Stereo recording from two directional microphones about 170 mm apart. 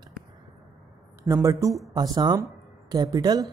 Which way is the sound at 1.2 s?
15° right (ahead or behind).